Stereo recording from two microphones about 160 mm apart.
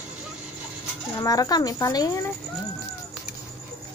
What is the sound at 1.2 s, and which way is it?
Speech, 20° left (ahead or behind).